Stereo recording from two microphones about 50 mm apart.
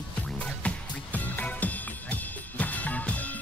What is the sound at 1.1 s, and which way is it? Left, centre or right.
Music, left.